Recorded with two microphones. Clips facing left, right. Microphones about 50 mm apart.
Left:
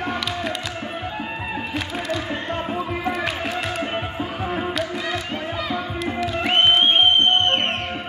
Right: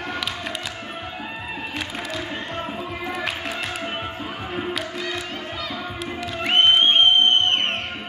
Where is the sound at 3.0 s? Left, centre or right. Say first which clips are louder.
Left 1 dB; centre.